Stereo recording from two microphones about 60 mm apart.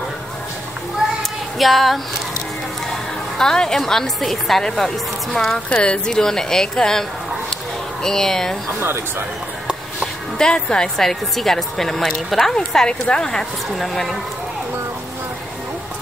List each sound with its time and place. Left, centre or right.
1.6 s speech: centre
3.3 s speech: centre
8.7 s speech: right
10.3 s speech: centre